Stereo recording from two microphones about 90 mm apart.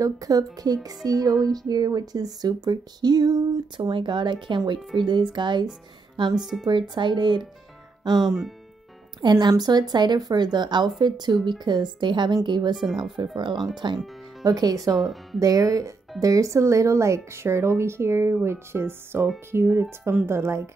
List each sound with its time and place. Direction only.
0.0 s a woman's voice: 40° right (ahead or behind); by 5.7 s 60° right (ahead or behind)
6.3 s speech: 5° right (ahead or behind)
6.9 s a woman's voice: 60° right (ahead or behind)
8.2 s speech: centre (ahead or behind)
9.2 s a woman's voice: 50° right (ahead or behind)
12.7 s speech: 5° right (ahead or behind)
13.4 s a woman's voice: 60° right (ahead or behind)
14.4 s speech: 45° right (ahead or behind)
15.0 s speech: centre (ahead or behind)
15.4 s speech: 40° right (ahead or behind)